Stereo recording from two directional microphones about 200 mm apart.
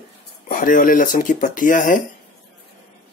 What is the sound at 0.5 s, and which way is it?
Speech, 40° left (ahead or behind).